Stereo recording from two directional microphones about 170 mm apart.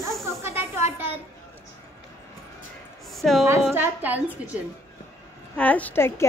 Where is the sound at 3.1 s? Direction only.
Centre (ahead or behind).